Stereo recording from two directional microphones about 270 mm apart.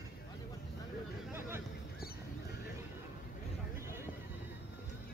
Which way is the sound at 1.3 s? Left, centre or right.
Centre.